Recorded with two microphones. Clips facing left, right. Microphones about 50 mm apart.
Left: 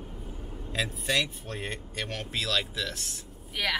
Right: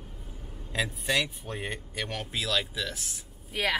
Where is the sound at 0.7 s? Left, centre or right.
Centre.